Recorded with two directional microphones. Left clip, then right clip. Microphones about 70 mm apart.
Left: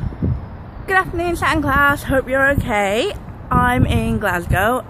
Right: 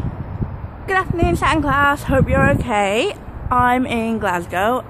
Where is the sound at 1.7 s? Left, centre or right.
Left.